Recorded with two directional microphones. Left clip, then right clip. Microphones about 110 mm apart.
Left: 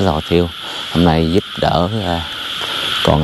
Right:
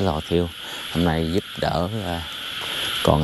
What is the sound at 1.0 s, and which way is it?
Speech, 15° left (ahead or behind).